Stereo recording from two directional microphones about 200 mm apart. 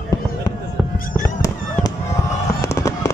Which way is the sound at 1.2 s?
15° left (ahead or behind).